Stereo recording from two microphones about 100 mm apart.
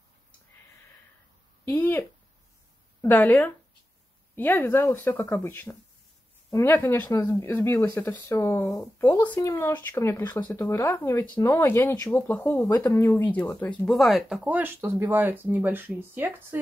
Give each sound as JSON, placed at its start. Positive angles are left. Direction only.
{"t": 1.7, "sound": "speech", "side_deg": 20}
{"t": 13.8, "sound": "speech", "side_deg": 0}
{"t": 14.4, "sound": "speech", "side_deg": -20}